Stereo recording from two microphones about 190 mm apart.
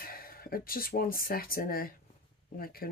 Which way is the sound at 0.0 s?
50° left (ahead or behind).